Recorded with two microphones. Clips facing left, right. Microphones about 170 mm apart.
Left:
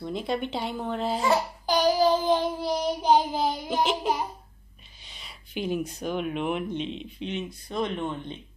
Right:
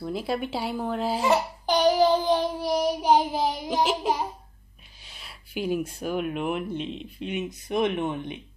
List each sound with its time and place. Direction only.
0.0 s speech: 5° right (ahead or behind)
1.2 s babbling: 20° right (ahead or behind)
2.6 s child singing: 15° right (ahead or behind)
5.1 s speech: 5° right (ahead or behind)
7.4 s child singing: 20° right (ahead or behind)